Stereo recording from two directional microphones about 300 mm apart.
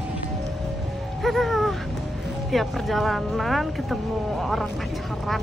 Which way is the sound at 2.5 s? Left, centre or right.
Centre.